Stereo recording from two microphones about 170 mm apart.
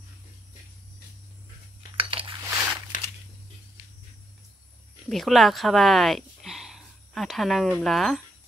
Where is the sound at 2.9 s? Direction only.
50° left (ahead or behind).